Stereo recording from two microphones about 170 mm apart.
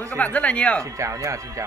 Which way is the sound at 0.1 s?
10° left (ahead or behind).